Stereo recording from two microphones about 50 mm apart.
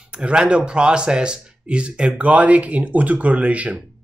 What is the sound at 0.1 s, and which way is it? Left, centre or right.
Speech, centre.